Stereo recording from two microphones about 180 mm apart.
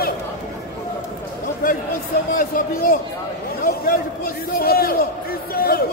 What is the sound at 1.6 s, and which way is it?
A man's voice, 55° left (ahead or behind).